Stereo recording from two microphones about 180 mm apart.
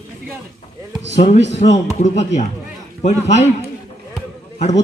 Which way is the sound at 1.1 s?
40° left (ahead or behind).